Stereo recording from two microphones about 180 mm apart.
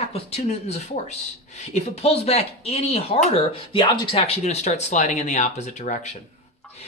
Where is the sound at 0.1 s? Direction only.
35° left (ahead or behind).